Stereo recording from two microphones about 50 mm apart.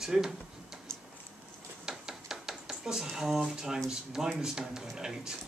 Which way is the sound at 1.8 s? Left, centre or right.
Centre.